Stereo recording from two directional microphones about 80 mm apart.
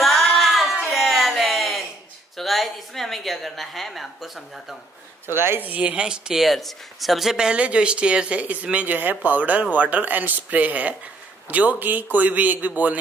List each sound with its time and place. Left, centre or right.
0.0 s a sound: centre
2.3 s a woman's voice: centre
5.3 s speech: right